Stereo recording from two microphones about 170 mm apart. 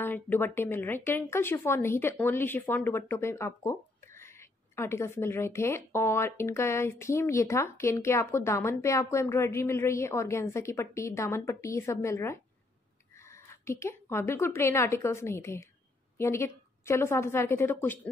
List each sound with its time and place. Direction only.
0.0 s a woman's voice: 10° left (ahead or behind)